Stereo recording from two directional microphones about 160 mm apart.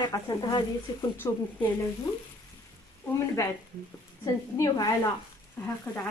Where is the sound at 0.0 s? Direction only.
25° left (ahead or behind).